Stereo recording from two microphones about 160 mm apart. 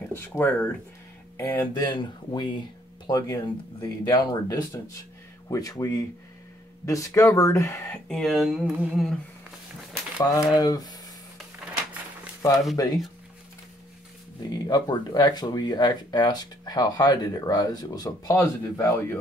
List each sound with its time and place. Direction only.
0.1 s speech: 15° left (ahead or behind)
1.7 s speech: 30° left (ahead or behind)
8.1 s speech: centre (ahead or behind)
10.1 s speech: 20° left (ahead or behind)
12.4 s speech: 20° left (ahead or behind)
14.7 s speech: 25° left (ahead or behind)